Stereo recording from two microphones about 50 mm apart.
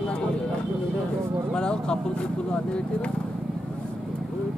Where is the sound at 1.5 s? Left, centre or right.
Centre.